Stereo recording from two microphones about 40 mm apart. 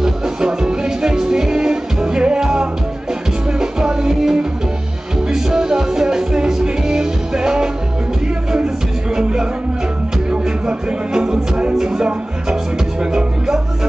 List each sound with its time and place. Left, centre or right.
0.0 s music: centre
9.1 s music: centre